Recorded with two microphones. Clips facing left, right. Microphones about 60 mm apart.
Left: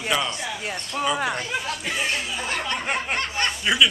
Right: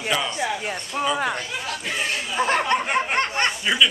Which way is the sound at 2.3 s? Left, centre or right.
Right.